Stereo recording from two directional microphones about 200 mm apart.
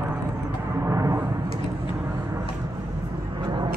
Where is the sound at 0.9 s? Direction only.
15° right (ahead or behind).